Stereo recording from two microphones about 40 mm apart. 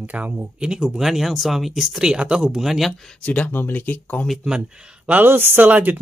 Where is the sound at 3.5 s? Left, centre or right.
Left.